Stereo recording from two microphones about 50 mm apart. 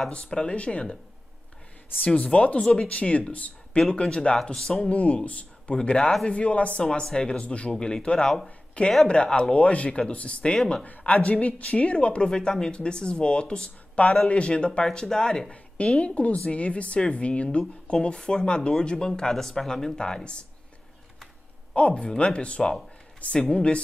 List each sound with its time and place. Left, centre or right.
0.1 s speech: left
2.0 s speech: left
3.7 s speech: centre
5.8 s speech: centre
6.8 s speech: centre
11.2 s speech: left
16.0 s speech: left; by 20.0 s centre
21.7 s speech: left